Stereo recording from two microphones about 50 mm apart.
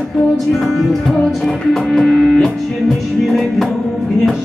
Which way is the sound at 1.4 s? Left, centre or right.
Centre.